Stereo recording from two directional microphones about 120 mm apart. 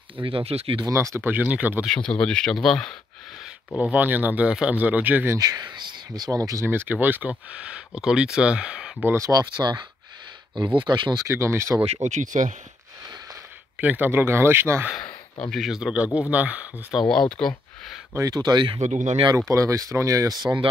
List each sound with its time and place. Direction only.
0.2 s speech: 50° right (ahead or behind)
0.8 s speech: 25° right (ahead or behind)
1.9 s speech: 5° left (ahead or behind)
3.7 s speech: 10° right (ahead or behind)
5.4 s speech: 35° right (ahead or behind); by 8.9 s 5° right (ahead or behind)
9.0 s speech: 25° right (ahead or behind)
11.2 s speech: 25° right (ahead or behind)
11.8 s speech: 70° right (ahead or behind); by 12.5 s 90° right
13.7 s speech: 15° right (ahead or behind)
15.5 s speech: centre (ahead or behind)
17.4 s speech: 5° left (ahead or behind)
18.1 s speech: 30° right (ahead or behind)
18.8 s speech: 75° right (ahead or behind)
19.5 s speech: 25° right (ahead or behind)